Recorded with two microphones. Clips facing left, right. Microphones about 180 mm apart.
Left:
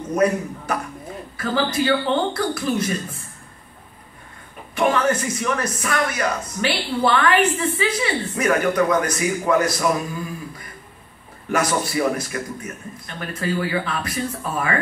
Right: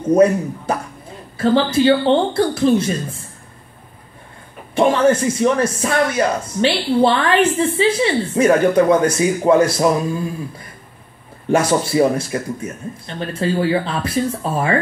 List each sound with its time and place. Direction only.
0.1 s speech: 30° right (ahead or behind)
4.7 s speech: 25° right (ahead or behind)
11.4 s speech: 30° right (ahead or behind)